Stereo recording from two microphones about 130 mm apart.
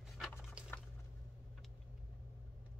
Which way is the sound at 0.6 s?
10° right (ahead or behind).